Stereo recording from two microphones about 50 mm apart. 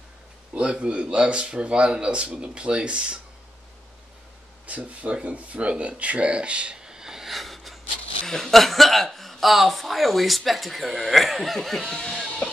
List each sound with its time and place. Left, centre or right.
0.6 s speech: right
4.6 s speech: right; by 12.3 s centre